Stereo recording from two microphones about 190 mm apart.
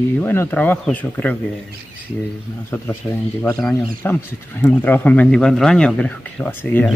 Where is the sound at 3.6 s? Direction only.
5° left (ahead or behind).